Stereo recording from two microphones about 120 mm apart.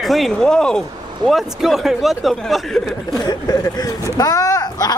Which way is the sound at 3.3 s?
30° left (ahead or behind).